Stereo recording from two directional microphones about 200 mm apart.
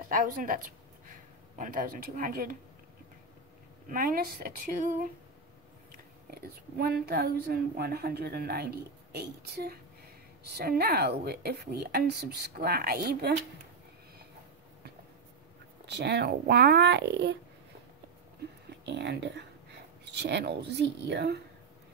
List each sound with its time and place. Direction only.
0.1 s a woman's voice: 45° right (ahead or behind)
1.6 s a woman's voice: 45° right (ahead or behind)
3.9 s a woman's voice: 45° right (ahead or behind)
6.8 s a woman's voice: 50° right (ahead or behind)
15.8 s speech: 60° right (ahead or behind)
18.9 s speech: 60° right (ahead or behind)